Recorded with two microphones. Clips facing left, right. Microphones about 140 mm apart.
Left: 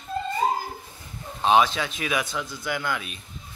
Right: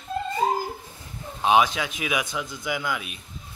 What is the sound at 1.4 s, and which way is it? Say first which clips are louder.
Speech: even; 10° right (ahead or behind).